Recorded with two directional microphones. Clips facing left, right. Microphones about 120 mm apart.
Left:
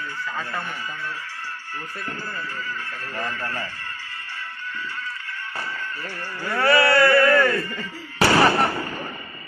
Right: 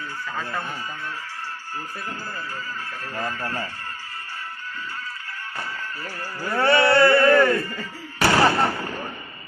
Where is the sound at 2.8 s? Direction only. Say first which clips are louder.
Right 3 dB; 10° right (ahead or behind).